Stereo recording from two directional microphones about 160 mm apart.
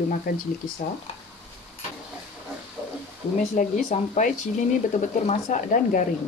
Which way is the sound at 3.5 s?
50° left (ahead or behind).